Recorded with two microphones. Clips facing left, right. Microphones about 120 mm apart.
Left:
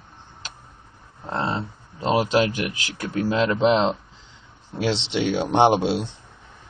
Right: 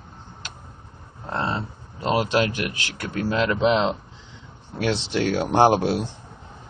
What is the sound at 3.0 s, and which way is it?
Speech, 20° left (ahead or behind).